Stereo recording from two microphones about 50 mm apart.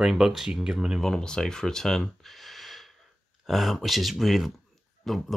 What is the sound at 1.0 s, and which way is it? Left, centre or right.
Speech, centre.